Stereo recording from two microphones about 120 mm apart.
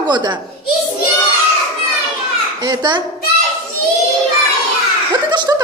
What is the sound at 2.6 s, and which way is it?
Speech, 40° right (ahead or behind).